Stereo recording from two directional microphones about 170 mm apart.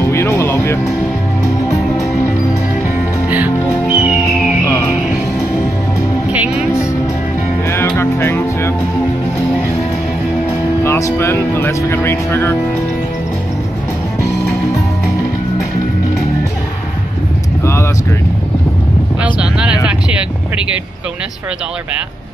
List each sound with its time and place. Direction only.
0.0 s music: 15° left (ahead or behind)
3.3 s music: 10° right (ahead or behind)
4.6 s music: 15° left (ahead or behind)
6.3 s music: 5° right (ahead or behind)
8.0 s music: 15° left (ahead or behind)
10.8 s speech: 15° left (ahead or behind)
19.2 s vehicle: 5° right (ahead or behind)